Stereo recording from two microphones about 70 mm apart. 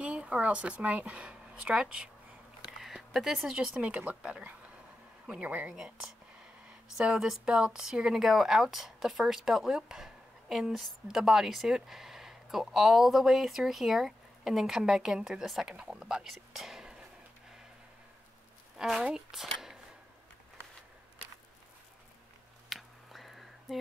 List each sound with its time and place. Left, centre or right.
0.0 s speech: centre
2.6 s a sound: centre
3.5 s speech: centre
7.0 s speech: centre
18.8 s speech: centre
22.7 s finger snapping: centre